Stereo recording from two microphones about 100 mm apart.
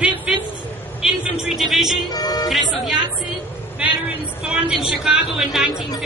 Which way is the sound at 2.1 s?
40° left (ahead or behind).